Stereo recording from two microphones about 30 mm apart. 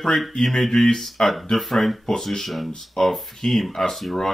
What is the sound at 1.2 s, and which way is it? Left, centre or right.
Speech, left.